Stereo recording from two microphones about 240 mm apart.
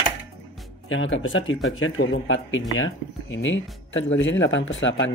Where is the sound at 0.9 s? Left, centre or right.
Left.